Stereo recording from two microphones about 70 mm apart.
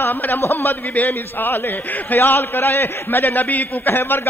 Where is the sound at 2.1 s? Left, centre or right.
Left.